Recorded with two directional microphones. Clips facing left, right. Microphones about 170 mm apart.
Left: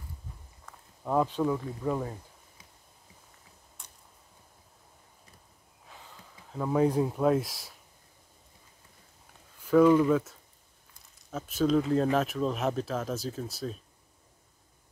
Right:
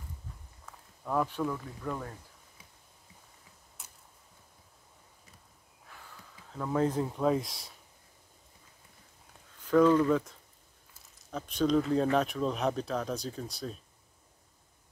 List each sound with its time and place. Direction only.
1.0 s speech: 20° left (ahead or behind)
3.8 s tick-tock: 5° right (ahead or behind)
6.5 s speech: 10° left (ahead or behind)
9.6 s speech: 10° left (ahead or behind)
10.9 s a sound: centre (ahead or behind)
11.9 s speech: centre (ahead or behind)